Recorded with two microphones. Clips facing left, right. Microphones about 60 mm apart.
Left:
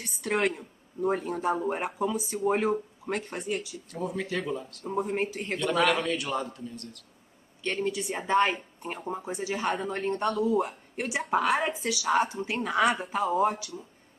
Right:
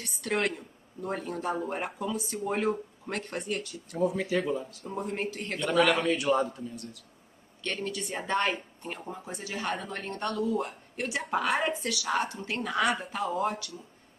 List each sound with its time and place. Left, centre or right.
0.2 s a man's voice: centre
4.8 s a man's voice: centre
7.6 s speech: centre
9.1 s speech: left
9.5 s a man's voice: centre
9.8 s speech: left
11.2 s a man's voice: centre